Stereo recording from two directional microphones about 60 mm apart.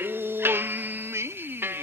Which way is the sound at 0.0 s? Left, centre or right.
Right.